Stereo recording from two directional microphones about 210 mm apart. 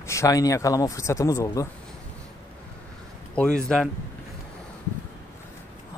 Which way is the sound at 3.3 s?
5° left (ahead or behind).